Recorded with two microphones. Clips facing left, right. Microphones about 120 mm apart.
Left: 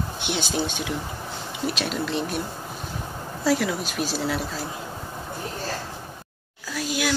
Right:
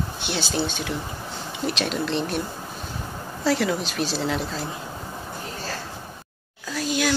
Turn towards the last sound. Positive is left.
turn(degrees=5)  # may be behind; listen again after turning